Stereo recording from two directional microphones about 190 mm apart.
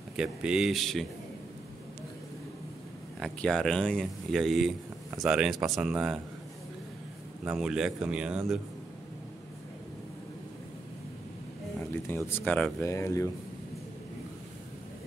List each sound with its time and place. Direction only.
0.1 s speech: 5° right (ahead or behind)
3.2 s speech: 5° left (ahead or behind)
7.4 s speech: 5° right (ahead or behind)
11.8 s speech: 10° left (ahead or behind)